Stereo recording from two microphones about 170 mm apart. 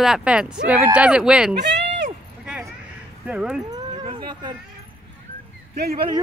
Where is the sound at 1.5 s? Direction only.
85° right.